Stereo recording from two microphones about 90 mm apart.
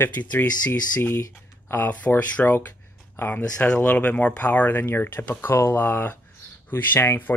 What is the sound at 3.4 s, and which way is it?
Speech, 10° left (ahead or behind).